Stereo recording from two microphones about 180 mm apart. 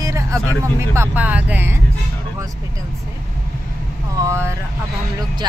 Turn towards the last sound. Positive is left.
turn(degrees=-15)  # may be behind; listen again after turning